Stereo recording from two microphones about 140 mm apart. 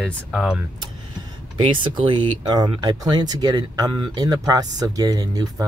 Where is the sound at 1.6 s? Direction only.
35° right (ahead or behind).